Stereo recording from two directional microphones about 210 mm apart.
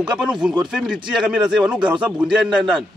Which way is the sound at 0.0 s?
5° right (ahead or behind).